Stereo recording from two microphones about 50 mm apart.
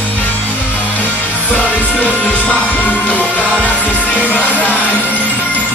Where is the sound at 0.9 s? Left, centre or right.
Left.